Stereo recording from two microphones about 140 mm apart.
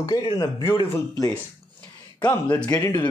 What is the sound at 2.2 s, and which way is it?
Speech, 10° left (ahead or behind).